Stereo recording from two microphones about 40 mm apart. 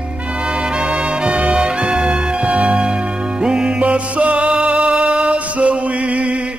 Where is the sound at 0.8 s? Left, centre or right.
Right.